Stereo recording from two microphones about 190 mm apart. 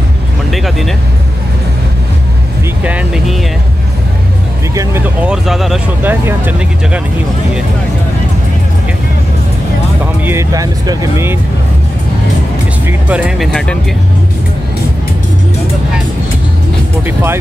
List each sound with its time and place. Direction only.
2.8 s speech: 5° right (ahead or behind)
4.7 s speech: 10° right (ahead or behind)
10.2 s speech: 15° right (ahead or behind)
12.8 s speech: 5° right (ahead or behind)
13.5 s speech: 5° left (ahead or behind)